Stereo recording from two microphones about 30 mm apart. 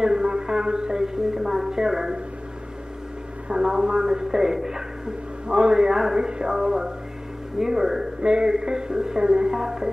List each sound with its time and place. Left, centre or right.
0.0 s a woman's voice: right
3.4 s a woman's voice: right
8.2 s music: right
8.5 s a woman's voice: right
9.5 s speech: centre